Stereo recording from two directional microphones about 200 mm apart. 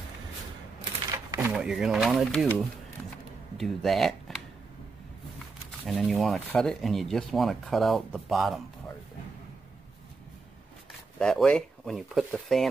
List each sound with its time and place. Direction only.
1.1 s a sound: 15° right (ahead or behind)
1.5 s speech: 5° right (ahead or behind)
5.9 s speech: centre (ahead or behind)
11.1 s speech: centre (ahead or behind)